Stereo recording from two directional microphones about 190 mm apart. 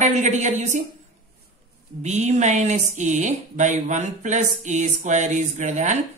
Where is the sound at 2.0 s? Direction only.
40° right (ahead or behind).